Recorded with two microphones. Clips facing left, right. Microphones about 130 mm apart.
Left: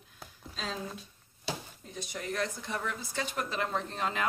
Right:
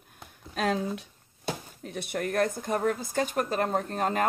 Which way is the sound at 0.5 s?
65° right (ahead or behind).